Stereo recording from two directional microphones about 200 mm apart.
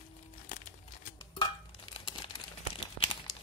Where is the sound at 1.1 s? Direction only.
25° left (ahead or behind).